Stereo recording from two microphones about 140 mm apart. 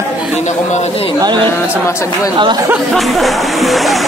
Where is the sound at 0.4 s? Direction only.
55° left (ahead or behind).